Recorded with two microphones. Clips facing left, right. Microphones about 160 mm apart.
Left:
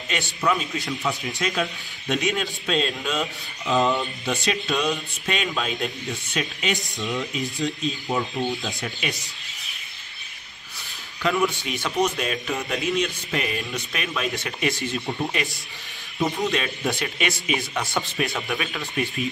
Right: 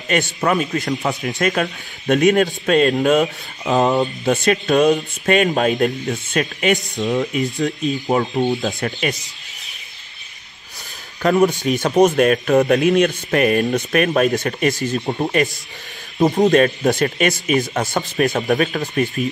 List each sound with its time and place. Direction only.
0.1 s speech: 50° right (ahead or behind)
8.5 s speech: 40° right (ahead or behind)
11.2 s speech: 40° right (ahead or behind)